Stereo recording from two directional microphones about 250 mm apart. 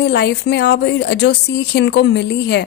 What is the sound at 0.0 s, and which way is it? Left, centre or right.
A woman's voice, left.